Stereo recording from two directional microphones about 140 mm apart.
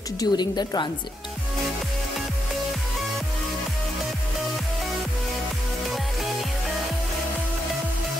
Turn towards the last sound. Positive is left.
turn(degrees=0)  # may be behind; listen again after turning